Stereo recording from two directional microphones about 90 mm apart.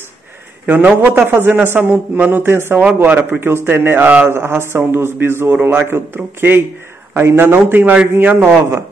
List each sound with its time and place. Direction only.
0.7 s a man's voice: 15° right (ahead or behind)